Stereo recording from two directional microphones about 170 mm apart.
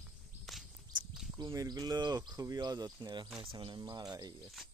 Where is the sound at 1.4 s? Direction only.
20° right (ahead or behind).